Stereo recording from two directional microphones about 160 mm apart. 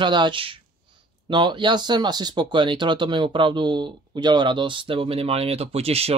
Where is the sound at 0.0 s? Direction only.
30° right (ahead or behind).